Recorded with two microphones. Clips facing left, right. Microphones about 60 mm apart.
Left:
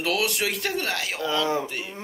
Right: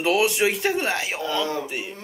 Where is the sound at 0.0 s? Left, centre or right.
Right.